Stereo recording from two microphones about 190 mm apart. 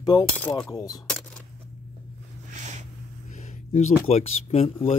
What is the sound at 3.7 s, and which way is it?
Speech, 35° left (ahead or behind).